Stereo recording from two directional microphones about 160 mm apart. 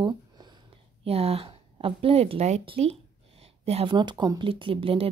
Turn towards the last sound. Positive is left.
turn(degrees=-35)  # may be behind; listen again after turning